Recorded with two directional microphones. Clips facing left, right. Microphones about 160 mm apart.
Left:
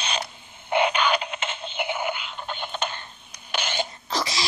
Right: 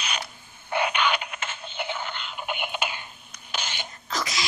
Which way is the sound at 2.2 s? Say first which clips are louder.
Right 1 dB; 10° right (ahead or behind).